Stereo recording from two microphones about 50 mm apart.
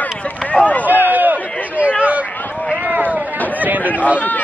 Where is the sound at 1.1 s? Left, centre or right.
Right.